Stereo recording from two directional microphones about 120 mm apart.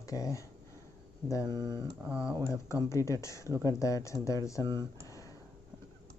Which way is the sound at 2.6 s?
25° left (ahead or behind).